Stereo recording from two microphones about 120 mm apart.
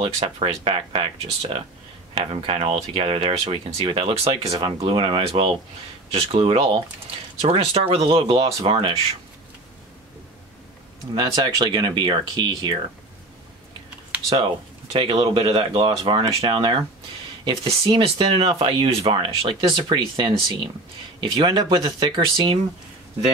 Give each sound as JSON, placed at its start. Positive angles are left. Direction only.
{"t": 0.0, "sound": "speech", "side_deg": -50}
{"t": 4.6, "sound": "speech", "side_deg": -45}
{"t": 11.1, "sound": "speech", "side_deg": -40}
{"t": 14.3, "sound": "speech", "side_deg": -50}